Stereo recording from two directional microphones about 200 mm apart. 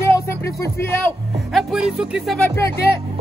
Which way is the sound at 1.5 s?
Centre (ahead or behind).